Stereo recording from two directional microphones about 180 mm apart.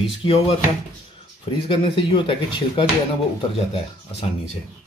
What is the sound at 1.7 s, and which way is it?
Speech, 30° left (ahead or behind).